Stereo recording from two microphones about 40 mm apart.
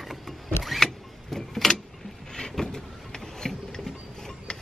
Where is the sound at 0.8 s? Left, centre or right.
Centre.